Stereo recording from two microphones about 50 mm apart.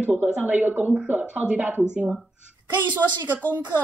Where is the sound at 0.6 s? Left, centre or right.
Right.